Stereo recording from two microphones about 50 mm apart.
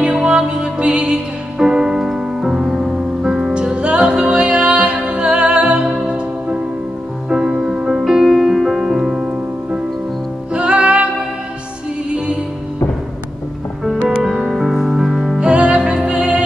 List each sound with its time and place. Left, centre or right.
0.0 s music: right
3.5 s music: right
7.2 s music: centre; by 11.1 s right
14.1 s music: centre
15.4 s music: right